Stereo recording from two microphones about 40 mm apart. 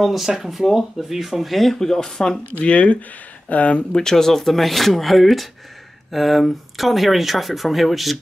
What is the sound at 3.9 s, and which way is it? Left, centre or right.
Speech, centre.